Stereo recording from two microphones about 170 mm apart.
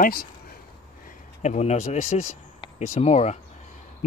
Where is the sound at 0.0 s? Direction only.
60° left (ahead or behind).